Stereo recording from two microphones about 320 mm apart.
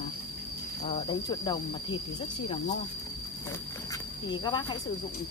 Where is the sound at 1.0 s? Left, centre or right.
Centre.